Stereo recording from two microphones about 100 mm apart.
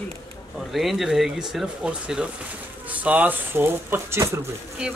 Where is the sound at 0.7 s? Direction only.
Centre (ahead or behind); by 4.4 s 25° right (ahead or behind).